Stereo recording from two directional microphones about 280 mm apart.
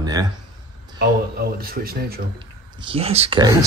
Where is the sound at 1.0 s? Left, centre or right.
Right.